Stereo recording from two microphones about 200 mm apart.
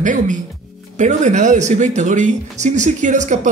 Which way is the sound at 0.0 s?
40° right (ahead or behind).